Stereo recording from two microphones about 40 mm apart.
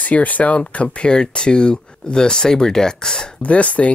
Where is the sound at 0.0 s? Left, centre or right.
Left; by 3.3 s centre.